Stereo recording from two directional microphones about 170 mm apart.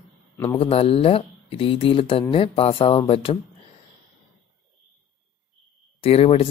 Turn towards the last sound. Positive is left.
turn(degrees=35)  # may be behind; listen again after turning